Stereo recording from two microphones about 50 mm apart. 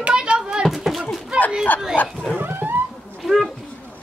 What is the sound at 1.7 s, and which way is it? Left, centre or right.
Speech, left.